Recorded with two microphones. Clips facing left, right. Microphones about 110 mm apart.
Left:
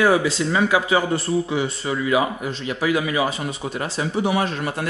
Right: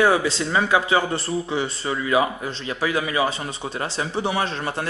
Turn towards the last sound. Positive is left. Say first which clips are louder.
# left 2 dB
turn(degrees=-30)  # may be behind; listen again after turning